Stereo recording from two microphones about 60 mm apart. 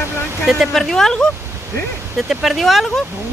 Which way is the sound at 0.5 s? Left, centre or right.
Centre.